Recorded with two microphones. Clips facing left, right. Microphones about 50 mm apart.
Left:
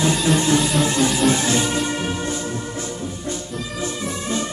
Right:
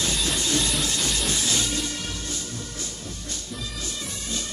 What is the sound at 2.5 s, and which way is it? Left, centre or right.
Music, left.